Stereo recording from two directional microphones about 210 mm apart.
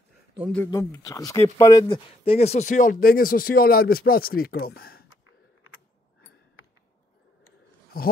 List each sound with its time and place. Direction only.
0.7 s speech: 15° left (ahead or behind); by 5.0 s 45° left (ahead or behind)
7.9 s speech: 45° left (ahead or behind)